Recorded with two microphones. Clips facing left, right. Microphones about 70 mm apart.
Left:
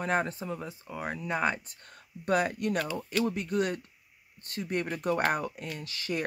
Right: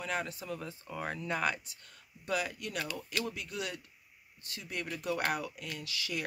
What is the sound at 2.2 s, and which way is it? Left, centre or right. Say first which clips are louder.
Speech: left 8 dB; left.